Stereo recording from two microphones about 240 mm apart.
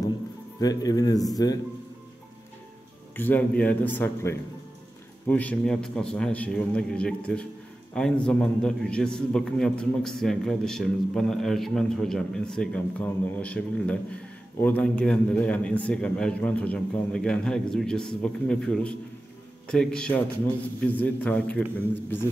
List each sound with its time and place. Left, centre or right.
0.6 s a man's voice: centre
3.2 s a man's voice: centre